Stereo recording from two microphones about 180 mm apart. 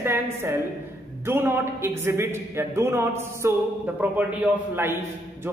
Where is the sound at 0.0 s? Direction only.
15° right (ahead or behind).